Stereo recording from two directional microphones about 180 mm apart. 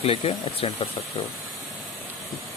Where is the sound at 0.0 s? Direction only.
30° left (ahead or behind).